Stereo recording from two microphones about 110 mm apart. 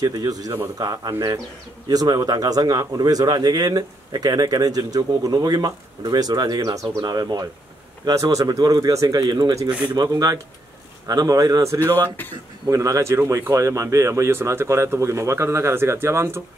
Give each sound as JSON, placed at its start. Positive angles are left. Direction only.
{"t": 0.0, "sound": "speech", "side_deg": -35}